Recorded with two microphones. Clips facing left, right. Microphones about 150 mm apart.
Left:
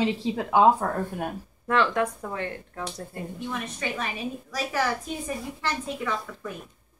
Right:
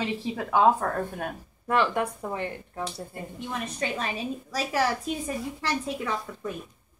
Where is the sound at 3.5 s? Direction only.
30° right (ahead or behind).